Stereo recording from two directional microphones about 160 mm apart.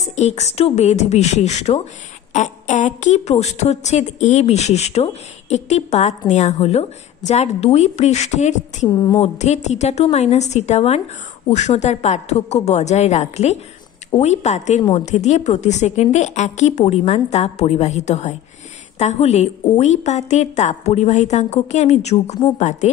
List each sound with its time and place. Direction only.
0.1 s a woman's voice: 45° left (ahead or behind)
8.8 s a woman's voice: 25° left (ahead or behind)
9.2 s a woman's voice: 45° left (ahead or behind)